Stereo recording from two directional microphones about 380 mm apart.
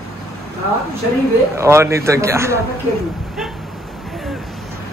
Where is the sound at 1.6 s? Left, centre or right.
Centre.